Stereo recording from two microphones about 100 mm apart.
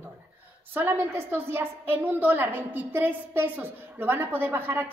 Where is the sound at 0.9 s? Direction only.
25° right (ahead or behind).